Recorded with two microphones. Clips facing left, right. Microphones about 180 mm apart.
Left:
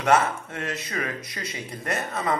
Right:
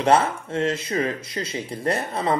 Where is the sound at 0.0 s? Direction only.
30° right (ahead or behind).